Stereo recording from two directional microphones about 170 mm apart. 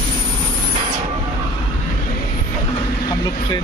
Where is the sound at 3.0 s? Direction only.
25° left (ahead or behind).